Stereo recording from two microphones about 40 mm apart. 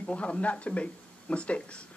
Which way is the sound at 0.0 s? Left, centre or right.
Left.